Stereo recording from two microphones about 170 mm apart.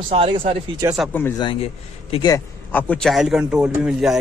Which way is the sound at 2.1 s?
25° left (ahead or behind).